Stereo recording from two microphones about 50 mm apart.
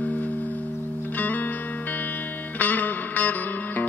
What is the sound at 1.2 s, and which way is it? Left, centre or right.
Music, left.